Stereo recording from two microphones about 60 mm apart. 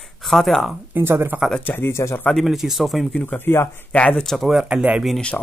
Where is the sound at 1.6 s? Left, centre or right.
Left.